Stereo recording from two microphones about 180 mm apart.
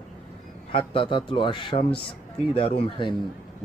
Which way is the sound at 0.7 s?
30° left (ahead or behind).